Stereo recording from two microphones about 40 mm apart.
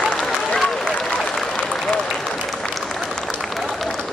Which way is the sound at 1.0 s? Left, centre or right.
Left.